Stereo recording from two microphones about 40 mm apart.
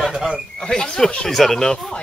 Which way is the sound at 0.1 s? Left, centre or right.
Right.